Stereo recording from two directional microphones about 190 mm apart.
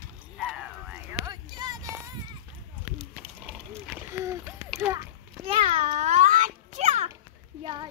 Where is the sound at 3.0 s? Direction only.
Centre (ahead or behind).